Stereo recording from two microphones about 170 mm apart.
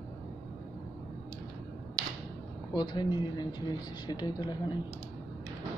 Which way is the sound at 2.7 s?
25° left (ahead or behind).